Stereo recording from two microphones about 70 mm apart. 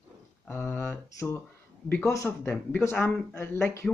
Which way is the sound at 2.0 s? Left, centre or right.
Left.